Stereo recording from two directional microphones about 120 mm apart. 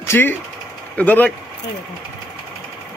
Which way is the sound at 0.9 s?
15° left (ahead or behind).